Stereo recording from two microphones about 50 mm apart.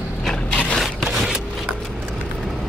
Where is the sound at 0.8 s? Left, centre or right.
Centre.